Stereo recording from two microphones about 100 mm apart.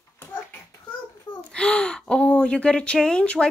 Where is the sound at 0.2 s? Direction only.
20° left (ahead or behind).